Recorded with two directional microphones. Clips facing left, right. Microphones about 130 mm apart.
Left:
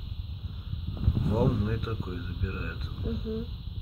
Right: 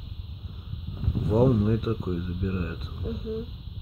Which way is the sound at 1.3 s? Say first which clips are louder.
Right 7 dB; 20° right (ahead or behind).